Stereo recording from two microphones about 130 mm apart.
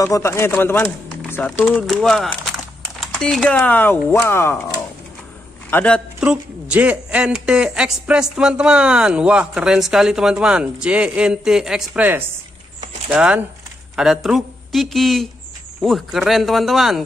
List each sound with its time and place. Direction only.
0.0 s speech: 20° left (ahead or behind)
5.7 s speech: 10° left (ahead or behind)
6.2 s a woman's voice: 10° right (ahead or behind)